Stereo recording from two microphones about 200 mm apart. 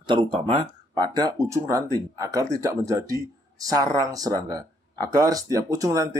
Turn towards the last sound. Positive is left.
turn(degrees=-15)  # may be behind; listen again after turning